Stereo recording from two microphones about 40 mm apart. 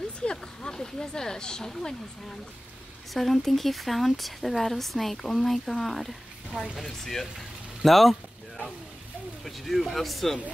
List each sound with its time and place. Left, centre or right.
0.2 s a sound: left
1.7 s speech: centre
3.1 s speech: centre
7.8 s speech: centre
9.4 s speech: centre